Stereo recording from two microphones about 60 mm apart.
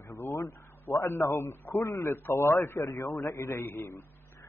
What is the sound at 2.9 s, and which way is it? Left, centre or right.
A man's voice, left.